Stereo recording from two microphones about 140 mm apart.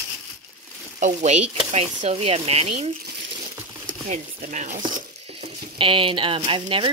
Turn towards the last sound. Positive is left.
turn(degrees=-40)  # may be behind; listen again after turning